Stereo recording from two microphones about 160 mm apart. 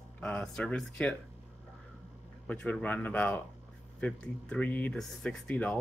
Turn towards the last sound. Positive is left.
turn(degrees=5)  # may be behind; listen again after turning